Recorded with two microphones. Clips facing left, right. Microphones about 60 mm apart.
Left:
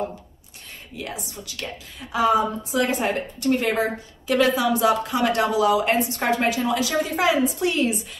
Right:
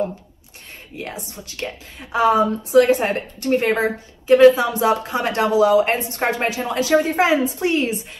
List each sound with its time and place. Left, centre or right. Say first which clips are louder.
0.9 s a woman's voice: right 2 dB; right